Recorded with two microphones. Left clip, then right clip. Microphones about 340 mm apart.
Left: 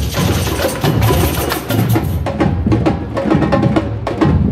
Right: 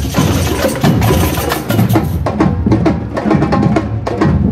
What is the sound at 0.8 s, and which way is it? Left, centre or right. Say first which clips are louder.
Music: right 2 dB; centre.